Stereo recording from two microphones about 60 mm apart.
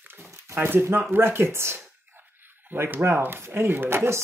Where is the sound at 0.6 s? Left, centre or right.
Right.